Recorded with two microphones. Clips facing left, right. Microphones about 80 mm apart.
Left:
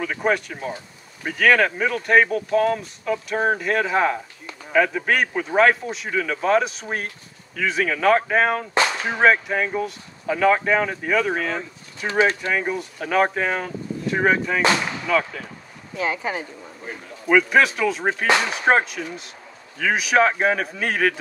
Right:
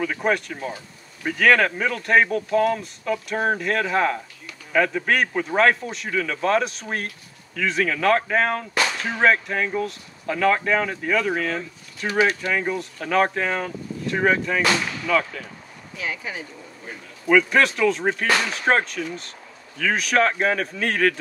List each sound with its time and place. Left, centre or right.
0.0 s speech: centre
8.8 s whip: centre
9.2 s speech: centre
12.1 s speech: left
12.5 s speech: centre
16.0 s speech: left
17.3 s speech: centre